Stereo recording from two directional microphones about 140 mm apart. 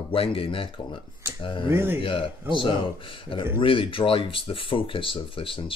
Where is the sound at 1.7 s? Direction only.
15° right (ahead or behind).